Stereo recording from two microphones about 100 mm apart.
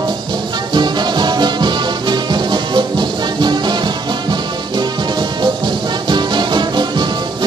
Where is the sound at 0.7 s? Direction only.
50° right (ahead or behind).